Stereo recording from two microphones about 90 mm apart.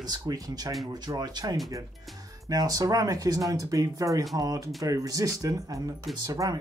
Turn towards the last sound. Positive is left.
turn(degrees=-40)  # may be behind; listen again after turning